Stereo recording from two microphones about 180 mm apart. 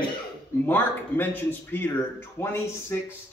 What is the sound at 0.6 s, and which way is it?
Speech, 10° left (ahead or behind).